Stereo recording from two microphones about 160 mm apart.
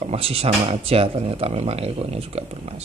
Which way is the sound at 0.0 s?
40° right (ahead or behind).